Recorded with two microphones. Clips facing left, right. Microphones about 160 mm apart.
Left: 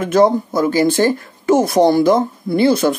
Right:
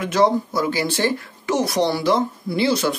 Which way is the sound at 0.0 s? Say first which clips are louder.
Left 5 dB; 50° left (ahead or behind).